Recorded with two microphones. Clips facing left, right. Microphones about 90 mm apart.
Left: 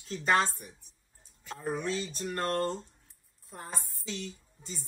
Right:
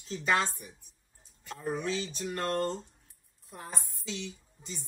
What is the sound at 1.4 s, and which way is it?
Speech, centre (ahead or behind).